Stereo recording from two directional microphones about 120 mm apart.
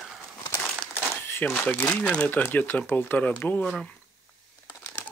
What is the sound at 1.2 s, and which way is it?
Speech, 20° left (ahead or behind).